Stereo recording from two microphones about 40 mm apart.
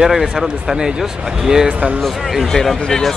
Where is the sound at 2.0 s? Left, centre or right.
Centre.